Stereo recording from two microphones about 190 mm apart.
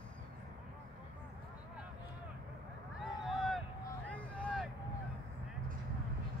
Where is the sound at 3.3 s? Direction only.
Centre (ahead or behind).